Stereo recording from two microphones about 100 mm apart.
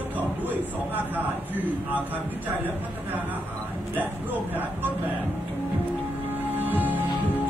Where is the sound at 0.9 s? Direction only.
15° right (ahead or behind).